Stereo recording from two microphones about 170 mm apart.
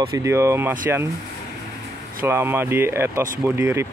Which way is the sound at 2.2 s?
15° right (ahead or behind).